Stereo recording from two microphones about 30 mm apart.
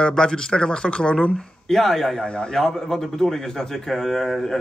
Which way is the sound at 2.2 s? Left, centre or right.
Left.